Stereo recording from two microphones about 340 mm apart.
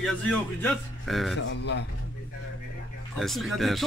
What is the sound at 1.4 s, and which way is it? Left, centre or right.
Speech, left.